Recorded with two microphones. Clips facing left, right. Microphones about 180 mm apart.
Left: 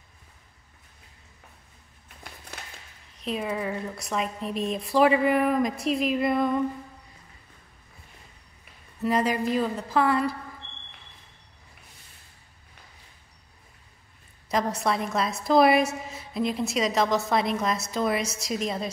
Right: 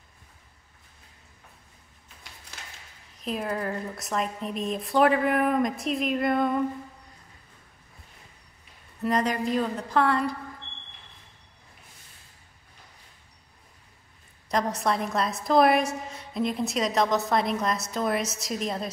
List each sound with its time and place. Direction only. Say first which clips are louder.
3.2 s a woman's voice: even; centre (ahead or behind)
9.0 s a woman's voice: left 1 dB; 5° left (ahead or behind)
14.5 s a woman's voice: even; centre (ahead or behind)